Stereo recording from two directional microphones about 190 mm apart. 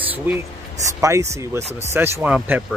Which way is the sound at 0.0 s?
10° right (ahead or behind).